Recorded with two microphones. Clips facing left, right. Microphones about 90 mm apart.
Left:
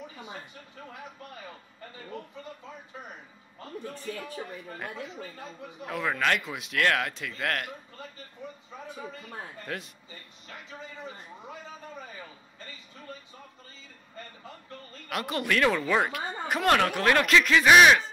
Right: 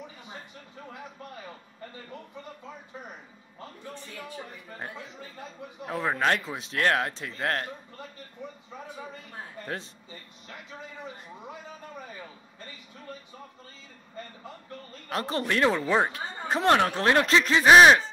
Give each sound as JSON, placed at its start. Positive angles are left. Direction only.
{"t": 5.9, "sound": "speech", "side_deg": -30}
{"t": 15.0, "sound": "speech", "side_deg": -30}